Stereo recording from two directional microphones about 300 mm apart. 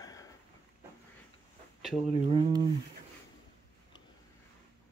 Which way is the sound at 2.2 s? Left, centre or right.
Centre.